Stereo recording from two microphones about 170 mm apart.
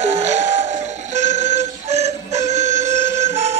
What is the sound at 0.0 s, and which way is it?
Alarm clock, 40° right (ahead or behind).